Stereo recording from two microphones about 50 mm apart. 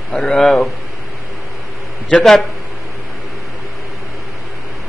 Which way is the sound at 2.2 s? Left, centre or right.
Centre.